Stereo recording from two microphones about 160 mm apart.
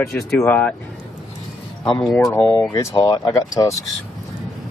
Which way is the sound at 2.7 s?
25° left (ahead or behind).